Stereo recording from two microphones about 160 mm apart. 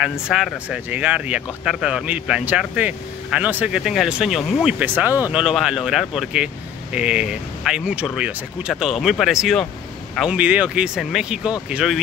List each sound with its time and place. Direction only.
0.3 s speech: centre (ahead or behind)